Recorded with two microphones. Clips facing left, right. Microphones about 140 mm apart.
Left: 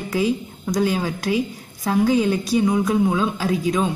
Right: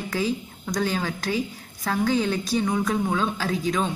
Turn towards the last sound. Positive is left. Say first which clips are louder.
# left 4 dB
turn(degrees=10)  # may be behind; listen again after turning